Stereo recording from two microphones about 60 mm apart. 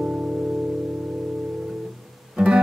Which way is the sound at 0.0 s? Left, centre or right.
Centre.